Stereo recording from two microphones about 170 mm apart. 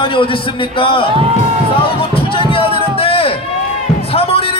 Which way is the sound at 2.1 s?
30° left (ahead or behind).